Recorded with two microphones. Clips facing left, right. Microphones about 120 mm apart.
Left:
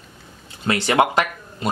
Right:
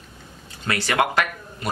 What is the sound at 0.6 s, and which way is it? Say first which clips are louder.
Speech: left 4 dB; 20° left (ahead or behind).